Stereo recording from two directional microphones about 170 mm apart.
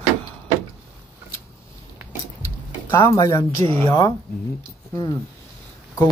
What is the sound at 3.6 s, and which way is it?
Speech, 35° right (ahead or behind).